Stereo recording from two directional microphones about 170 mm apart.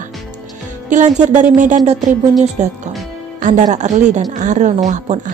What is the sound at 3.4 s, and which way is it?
Speech, 50° right (ahead or behind).